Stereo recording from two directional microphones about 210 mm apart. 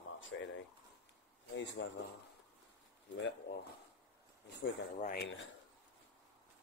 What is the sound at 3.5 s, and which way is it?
Speech, 45° left (ahead or behind).